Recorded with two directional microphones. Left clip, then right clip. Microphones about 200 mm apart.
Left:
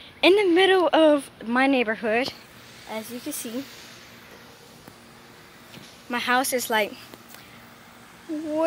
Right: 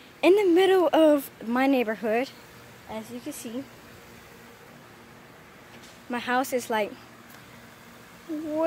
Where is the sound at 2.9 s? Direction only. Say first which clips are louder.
Left 3 dB; 35° left (ahead or behind).